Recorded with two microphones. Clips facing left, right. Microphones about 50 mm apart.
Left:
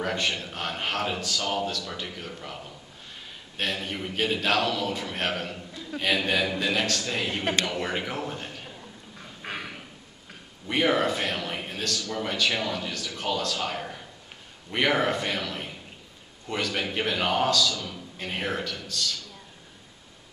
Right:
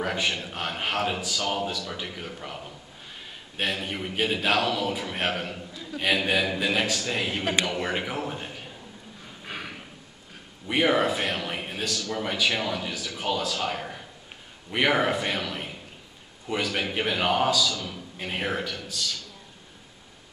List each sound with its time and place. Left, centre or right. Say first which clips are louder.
0.0 s a man's voice: right 1 dB; centre
9.4 s a sound: left 2 dB; left
10.7 s a man's voice: right 1 dB; centre